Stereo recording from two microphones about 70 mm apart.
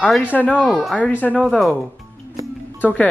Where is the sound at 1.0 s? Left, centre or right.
Left.